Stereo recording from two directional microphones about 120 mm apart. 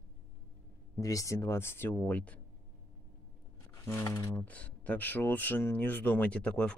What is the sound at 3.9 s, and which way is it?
Speech, 25° left (ahead or behind).